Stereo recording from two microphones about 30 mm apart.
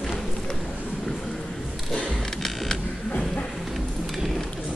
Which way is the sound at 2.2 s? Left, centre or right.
Centre.